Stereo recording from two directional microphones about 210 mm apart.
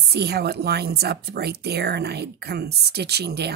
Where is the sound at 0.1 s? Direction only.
50° right (ahead or behind).